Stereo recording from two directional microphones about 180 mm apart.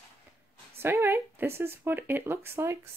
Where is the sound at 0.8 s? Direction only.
15° right (ahead or behind).